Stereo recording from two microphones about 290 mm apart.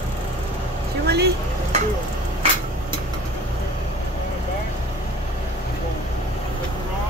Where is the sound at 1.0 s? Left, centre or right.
Right.